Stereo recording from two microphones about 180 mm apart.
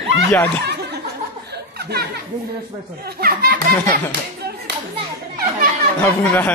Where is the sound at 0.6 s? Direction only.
65° right (ahead or behind).